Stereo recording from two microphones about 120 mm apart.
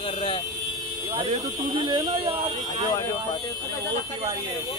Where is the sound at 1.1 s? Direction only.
50° right (ahead or behind).